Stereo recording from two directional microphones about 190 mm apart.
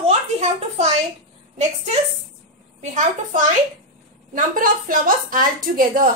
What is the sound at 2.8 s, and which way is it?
A woman's voice, 40° right (ahead or behind).